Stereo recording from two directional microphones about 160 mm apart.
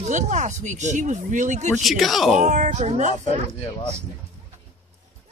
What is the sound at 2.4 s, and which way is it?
Speech, 50° right (ahead or behind).